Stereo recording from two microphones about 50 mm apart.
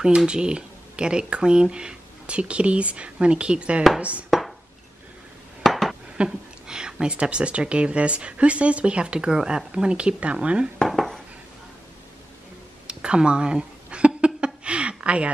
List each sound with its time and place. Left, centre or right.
0.3 s speech: centre
4.3 s chopping: centre
5.6 s dishes: centre
6.1 s speech: centre
10.9 s dishes: centre
12.8 s a sound: centre